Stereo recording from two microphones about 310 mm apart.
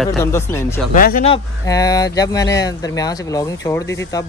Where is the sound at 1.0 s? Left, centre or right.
Left.